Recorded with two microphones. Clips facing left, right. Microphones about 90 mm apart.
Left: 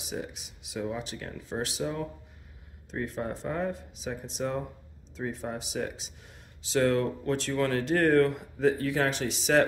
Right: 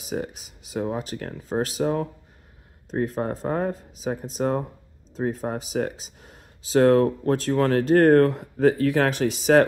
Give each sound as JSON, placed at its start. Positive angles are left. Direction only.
{"t": 0.0, "sound": "speech", "side_deg": -45}